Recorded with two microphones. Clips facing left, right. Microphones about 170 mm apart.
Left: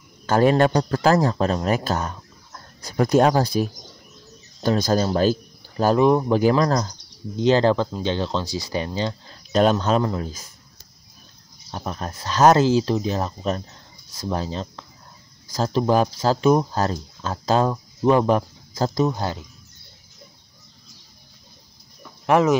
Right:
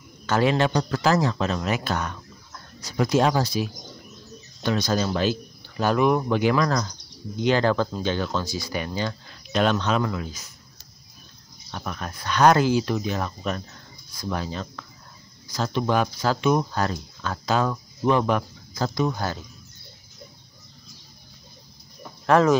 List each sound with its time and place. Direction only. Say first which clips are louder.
0.3 s speech: left 4 dB; 45° left (ahead or behind)
2.0 s chicken: left 2 dB; 30° left (ahead or behind)
2.9 s speech: left 4 dB; 50° left (ahead or behind)
4.6 s speech: left 4 dB; 45° left (ahead or behind)
9.6 s speech: left 4 dB; 40° left (ahead or behind)
11.7 s speech: left 3 dB; 30° left (ahead or behind)
19.0 s speech: left 2 dB; 20° left (ahead or behind)
22.2 s speech: even; 15° left (ahead or behind)